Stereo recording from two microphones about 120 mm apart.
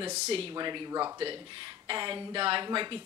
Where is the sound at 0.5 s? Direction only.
35° right (ahead or behind).